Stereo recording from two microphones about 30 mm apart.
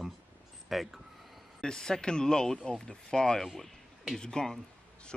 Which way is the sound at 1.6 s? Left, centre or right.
Left.